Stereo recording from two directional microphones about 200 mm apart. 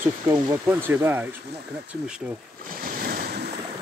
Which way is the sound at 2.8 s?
45° right (ahead or behind).